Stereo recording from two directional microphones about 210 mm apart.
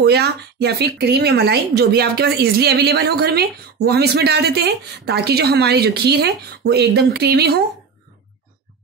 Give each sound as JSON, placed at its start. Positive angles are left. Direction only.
{"t": 0.0, "sound": "a woman's voice", "side_deg": -50}